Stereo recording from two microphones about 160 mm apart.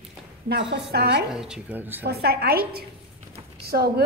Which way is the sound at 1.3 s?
5° right (ahead or behind).